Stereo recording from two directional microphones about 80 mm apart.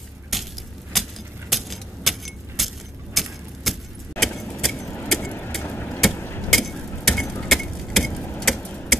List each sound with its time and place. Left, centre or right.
0.3 s keys jangling: centre
0.9 s a sound: centre
3.2 s clock: centre
3.7 s keys jangling: centre
4.4 s vehicle: centre
5.6 s vehicle: left
6.5 s a sound: centre
7.3 s vehicle: centre
8.4 s tick-tock: centre